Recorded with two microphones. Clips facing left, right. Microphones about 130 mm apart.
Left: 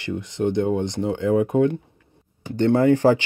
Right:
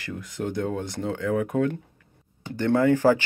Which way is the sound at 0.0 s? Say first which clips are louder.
Left 7 dB; 25° left (ahead or behind).